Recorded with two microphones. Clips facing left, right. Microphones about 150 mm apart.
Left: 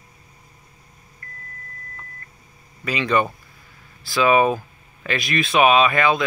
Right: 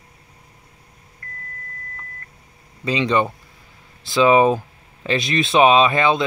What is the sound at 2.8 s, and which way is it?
Speech, 20° right (ahead or behind).